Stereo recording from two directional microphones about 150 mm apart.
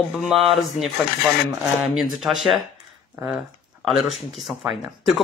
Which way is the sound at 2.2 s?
Centre (ahead or behind).